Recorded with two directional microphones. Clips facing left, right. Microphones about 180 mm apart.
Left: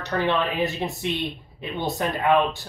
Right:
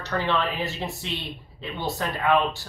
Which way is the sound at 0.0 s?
15° left (ahead or behind).